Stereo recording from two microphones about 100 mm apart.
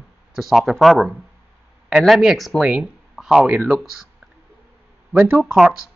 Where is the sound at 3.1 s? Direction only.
5° right (ahead or behind).